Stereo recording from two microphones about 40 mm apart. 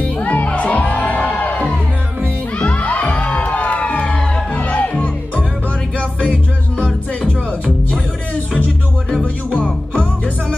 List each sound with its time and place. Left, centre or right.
0.2 s music: left
2.6 s music: left